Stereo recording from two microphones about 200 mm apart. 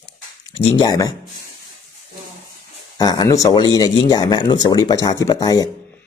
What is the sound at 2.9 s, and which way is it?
Speech, 20° left (ahead or behind).